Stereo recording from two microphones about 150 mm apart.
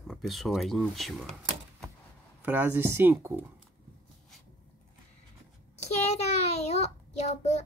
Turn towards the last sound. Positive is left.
turn(degrees=50)  # may be behind; listen again after turning